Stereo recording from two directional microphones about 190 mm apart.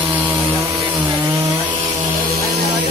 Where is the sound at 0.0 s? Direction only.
10° right (ahead or behind).